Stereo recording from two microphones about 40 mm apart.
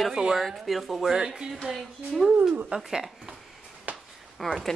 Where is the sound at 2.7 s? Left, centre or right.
Right.